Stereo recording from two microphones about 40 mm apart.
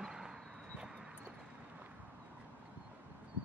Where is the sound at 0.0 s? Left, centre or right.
Centre.